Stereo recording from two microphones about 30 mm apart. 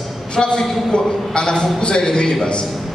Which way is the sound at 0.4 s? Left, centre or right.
Centre.